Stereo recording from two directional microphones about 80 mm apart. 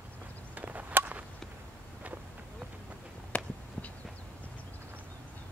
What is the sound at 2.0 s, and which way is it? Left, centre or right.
Vehicle, centre.